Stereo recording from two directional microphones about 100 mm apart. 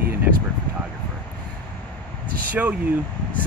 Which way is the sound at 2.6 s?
15° right (ahead or behind).